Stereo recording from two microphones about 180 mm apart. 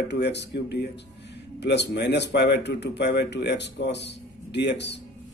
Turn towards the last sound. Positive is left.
turn(degrees=70)  # may be behind; listen again after turning